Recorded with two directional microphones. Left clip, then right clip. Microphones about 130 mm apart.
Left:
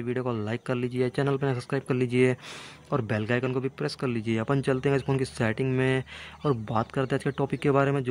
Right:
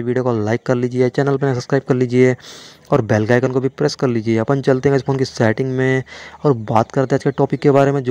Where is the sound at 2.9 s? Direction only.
50° right (ahead or behind).